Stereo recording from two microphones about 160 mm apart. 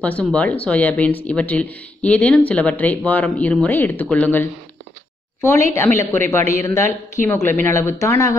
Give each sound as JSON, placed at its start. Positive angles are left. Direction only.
{"t": 0.0, "sound": "speech", "side_deg": 10}
{"t": 5.9, "sound": "speech", "side_deg": 15}